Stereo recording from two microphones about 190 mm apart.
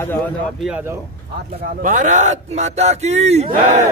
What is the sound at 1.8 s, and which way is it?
Speech, 40° right (ahead or behind).